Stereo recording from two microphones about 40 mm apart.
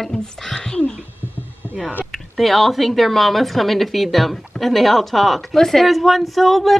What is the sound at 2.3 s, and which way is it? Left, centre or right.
A woman's voice, centre.